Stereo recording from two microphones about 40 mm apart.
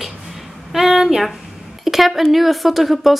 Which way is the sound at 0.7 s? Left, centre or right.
Centre.